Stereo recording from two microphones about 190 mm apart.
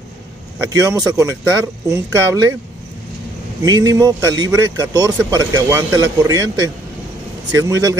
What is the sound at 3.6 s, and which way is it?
A man's voice, 20° right (ahead or behind).